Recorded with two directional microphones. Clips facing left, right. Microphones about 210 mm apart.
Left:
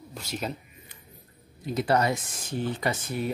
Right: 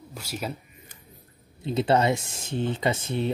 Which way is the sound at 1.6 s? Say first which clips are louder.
Right 2 dB; 25° right (ahead or behind).